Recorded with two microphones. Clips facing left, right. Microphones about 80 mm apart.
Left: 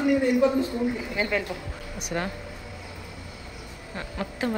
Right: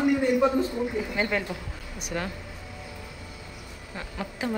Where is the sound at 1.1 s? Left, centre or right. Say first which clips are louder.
Even; right.